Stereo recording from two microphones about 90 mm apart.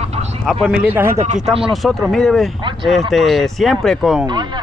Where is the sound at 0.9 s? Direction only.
30° right (ahead or behind).